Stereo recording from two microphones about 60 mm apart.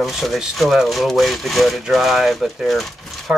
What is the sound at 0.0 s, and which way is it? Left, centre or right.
Speech, centre.